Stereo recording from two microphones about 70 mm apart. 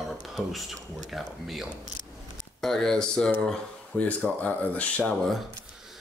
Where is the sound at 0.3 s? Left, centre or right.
Centre.